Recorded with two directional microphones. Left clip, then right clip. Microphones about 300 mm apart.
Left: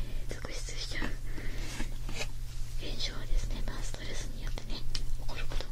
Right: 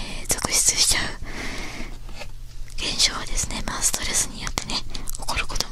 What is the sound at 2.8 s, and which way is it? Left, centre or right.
Whispering, right.